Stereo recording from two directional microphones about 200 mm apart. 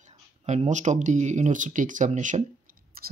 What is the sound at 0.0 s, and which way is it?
Speech, 35° right (ahead or behind).